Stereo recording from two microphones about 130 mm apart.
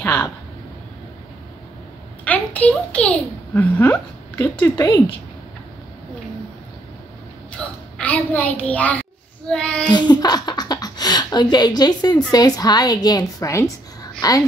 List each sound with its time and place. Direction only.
0.0 s speech: 15° left (ahead or behind)
2.2 s a child's voice: 10° left (ahead or behind)
7.5 s a child's voice: 10° left (ahead or behind)
9.5 s child singing: 5° left (ahead or behind)
9.8 s a sound: 35° left (ahead or behind)
11.5 s a woman's voice: 30° left (ahead or behind)